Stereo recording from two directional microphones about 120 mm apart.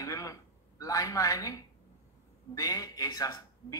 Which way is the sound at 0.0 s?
30° left (ahead or behind).